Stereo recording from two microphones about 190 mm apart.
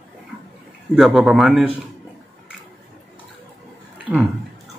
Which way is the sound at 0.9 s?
Centre (ahead or behind).